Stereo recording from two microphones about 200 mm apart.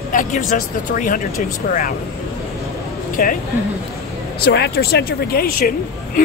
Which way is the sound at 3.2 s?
40° left (ahead or behind).